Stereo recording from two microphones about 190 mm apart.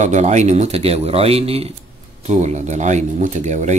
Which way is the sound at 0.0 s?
40° right (ahead or behind).